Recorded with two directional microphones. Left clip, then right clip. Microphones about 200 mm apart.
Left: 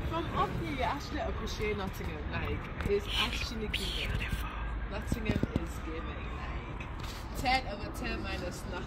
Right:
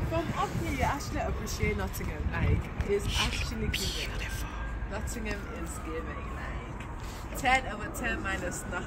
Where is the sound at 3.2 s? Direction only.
5° right (ahead or behind).